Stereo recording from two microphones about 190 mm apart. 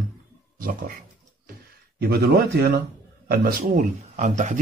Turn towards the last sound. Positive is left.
turn(degrees=-40)  # may be behind; listen again after turning